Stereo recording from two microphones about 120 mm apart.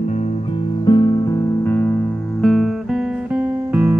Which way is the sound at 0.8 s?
40° left (ahead or behind).